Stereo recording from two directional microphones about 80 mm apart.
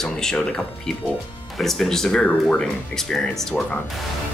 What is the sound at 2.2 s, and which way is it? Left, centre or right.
Speech, centre.